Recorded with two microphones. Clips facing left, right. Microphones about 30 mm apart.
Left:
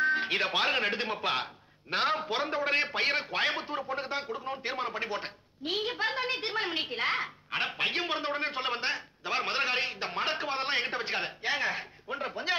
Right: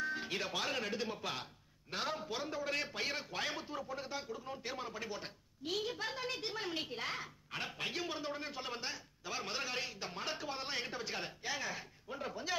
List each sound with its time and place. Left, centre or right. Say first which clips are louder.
0.0 s speech: left 11 dB; left